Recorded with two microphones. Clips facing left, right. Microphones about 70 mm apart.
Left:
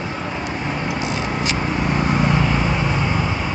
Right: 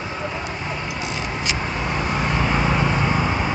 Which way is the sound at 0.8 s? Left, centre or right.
Left.